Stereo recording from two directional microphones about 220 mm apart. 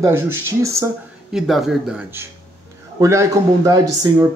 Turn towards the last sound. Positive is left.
turn(degrees=-15)  # may be behind; listen again after turning